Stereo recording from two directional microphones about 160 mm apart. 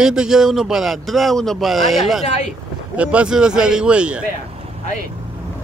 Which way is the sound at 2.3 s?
45° left (ahead or behind).